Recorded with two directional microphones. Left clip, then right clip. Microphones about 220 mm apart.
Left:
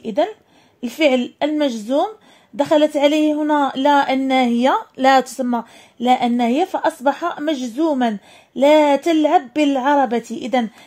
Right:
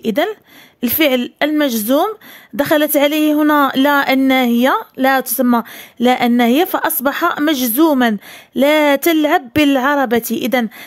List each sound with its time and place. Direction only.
0.0 s speech: 35° right (ahead or behind)